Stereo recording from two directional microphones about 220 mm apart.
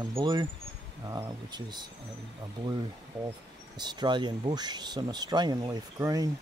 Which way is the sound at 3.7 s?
20° right (ahead or behind).